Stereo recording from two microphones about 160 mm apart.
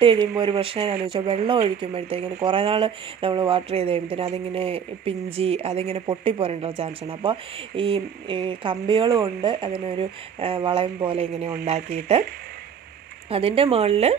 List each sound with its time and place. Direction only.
0.0 s speech: 35° right (ahead or behind)
13.3 s speech: 35° right (ahead or behind)